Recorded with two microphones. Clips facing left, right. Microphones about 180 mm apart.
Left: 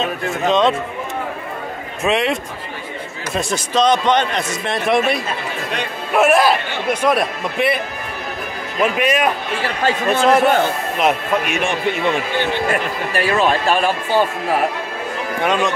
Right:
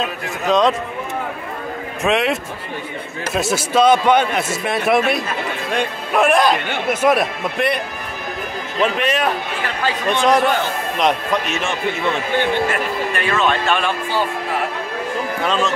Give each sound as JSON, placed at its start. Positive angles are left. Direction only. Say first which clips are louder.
{"t": 0.0, "sound": "a man's voice", "louder": "left 3 dB", "side_deg": 0}
{"t": 2.0, "sound": "a man's voice", "louder": "even", "side_deg": 0}
{"t": 3.3, "sound": "a man's voice", "louder": "right 2 dB", "side_deg": -5}
{"t": 13.1, "sound": "speech", "louder": "left 4 dB", "side_deg": 35}
{"t": 15.4, "sound": "speech", "louder": "left 2 dB", "side_deg": 15}